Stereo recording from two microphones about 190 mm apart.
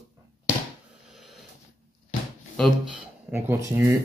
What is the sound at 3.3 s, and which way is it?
Speech, 15° right (ahead or behind).